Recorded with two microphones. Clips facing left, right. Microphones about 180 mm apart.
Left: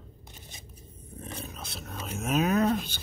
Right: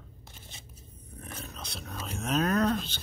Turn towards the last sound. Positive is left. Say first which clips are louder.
# left 2 dB
turn(degrees=10)  # may be behind; listen again after turning